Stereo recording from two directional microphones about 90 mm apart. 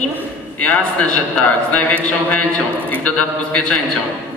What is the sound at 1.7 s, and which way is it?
Speech, 15° left (ahead or behind).